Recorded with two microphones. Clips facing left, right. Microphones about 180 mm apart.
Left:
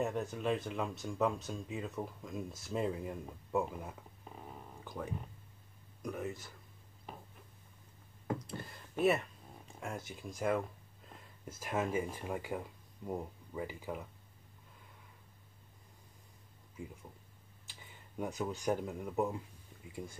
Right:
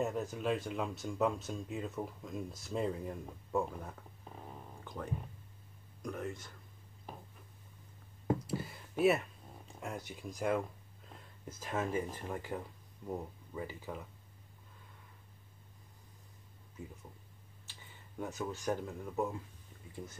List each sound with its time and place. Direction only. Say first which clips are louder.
0.0 s speech: even; centre (ahead or behind)
8.5 s speech: right 6 dB; 5° right (ahead or behind); by 14.0 s 15° left (ahead or behind)
18.2 s speech: left 2 dB; 15° left (ahead or behind)